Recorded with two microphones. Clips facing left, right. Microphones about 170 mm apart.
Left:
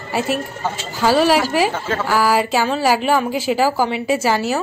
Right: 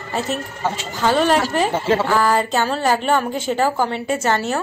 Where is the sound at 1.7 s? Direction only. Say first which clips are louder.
Right 5 dB; 30° right (ahead or behind).